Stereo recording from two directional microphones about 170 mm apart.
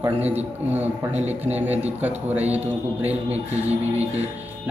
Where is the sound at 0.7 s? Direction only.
10° right (ahead or behind).